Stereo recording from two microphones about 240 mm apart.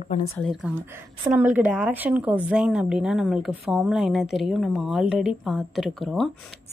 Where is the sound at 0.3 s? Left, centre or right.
Centre.